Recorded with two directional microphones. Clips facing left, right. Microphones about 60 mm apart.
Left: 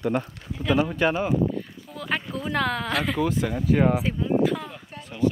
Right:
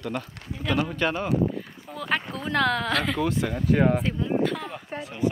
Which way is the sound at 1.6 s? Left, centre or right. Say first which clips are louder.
Left 1 dB; centre.